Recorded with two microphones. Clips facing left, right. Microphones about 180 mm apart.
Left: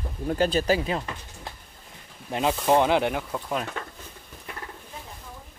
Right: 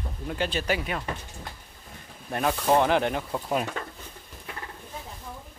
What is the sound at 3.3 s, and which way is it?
Speech, 10° right (ahead or behind).